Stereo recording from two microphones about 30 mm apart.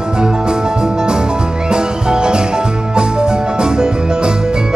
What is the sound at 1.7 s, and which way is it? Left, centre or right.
Music, right.